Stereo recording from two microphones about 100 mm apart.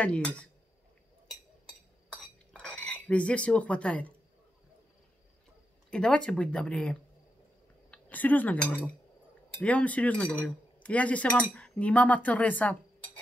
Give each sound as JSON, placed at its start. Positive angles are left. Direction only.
{"t": 0.0, "sound": "speech", "side_deg": 10}
{"t": 1.7, "sound": "cutlery", "side_deg": 5}
{"t": 5.9, "sound": "speech", "side_deg": 10}
{"t": 7.9, "sound": "cutlery", "side_deg": 15}
{"t": 9.6, "sound": "speech", "side_deg": 15}